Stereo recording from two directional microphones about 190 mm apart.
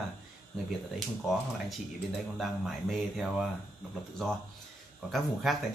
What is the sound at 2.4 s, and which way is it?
Speech, centre (ahead or behind).